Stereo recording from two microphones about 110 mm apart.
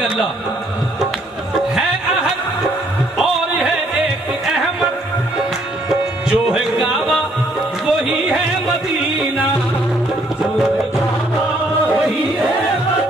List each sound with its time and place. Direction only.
5.9 s music: 5° right (ahead or behind)